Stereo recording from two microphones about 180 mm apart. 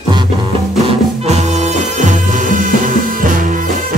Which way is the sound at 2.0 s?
45° right (ahead or behind).